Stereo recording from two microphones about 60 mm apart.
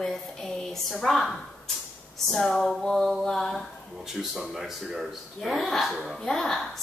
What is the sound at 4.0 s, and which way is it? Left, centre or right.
A woman's voice, centre.